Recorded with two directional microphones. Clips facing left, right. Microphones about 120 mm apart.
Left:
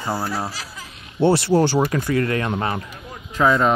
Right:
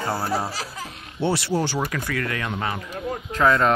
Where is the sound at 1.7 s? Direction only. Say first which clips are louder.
Left 7 dB; 30° left (ahead or behind).